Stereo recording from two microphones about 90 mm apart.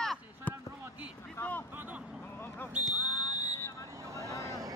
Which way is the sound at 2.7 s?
15° right (ahead or behind).